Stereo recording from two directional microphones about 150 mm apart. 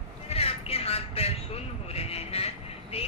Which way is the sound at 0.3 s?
40° left (ahead or behind).